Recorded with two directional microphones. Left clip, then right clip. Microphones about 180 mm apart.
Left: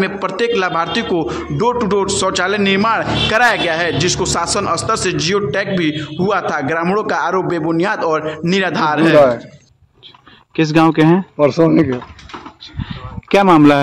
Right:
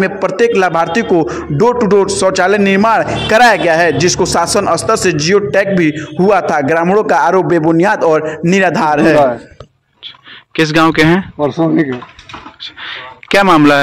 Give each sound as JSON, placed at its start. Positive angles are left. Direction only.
{"t": 0.0, "sound": "a man's voice", "side_deg": -25}
{"t": 10.5, "sound": "speech", "side_deg": 0}
{"t": 11.3, "sound": "speech", "side_deg": 25}
{"t": 12.7, "sound": "a sound", "side_deg": 0}